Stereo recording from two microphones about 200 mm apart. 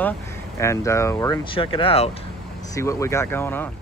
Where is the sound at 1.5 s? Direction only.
25° left (ahead or behind).